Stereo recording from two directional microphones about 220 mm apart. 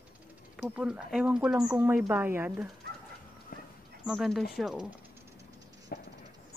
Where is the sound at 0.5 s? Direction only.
Centre (ahead or behind).